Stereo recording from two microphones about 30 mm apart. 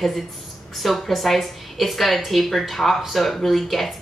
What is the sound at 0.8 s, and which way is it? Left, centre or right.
Speech, centre.